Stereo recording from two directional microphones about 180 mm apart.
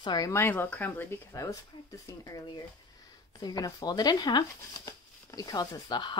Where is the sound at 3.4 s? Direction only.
20° left (ahead or behind).